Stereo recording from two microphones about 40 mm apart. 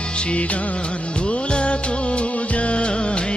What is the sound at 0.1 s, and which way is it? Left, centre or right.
Music, left.